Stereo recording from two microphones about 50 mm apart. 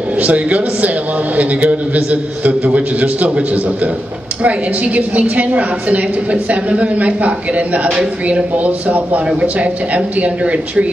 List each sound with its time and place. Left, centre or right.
0.1 s a woman's voice: right